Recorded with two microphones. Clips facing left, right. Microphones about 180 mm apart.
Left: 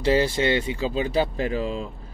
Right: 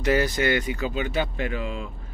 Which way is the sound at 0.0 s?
25° left (ahead or behind).